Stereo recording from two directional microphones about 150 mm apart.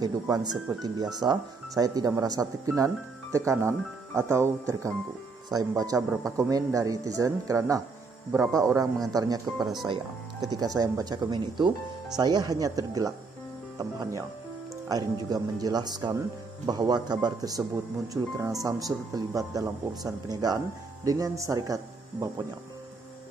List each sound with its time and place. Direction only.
0.0 s speech: 25° right (ahead or behind)
9.6 s speech: centre (ahead or behind)
10.4 s speech: 25° right (ahead or behind)